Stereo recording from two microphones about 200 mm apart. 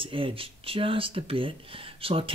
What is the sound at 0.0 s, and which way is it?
Speech, 25° right (ahead or behind).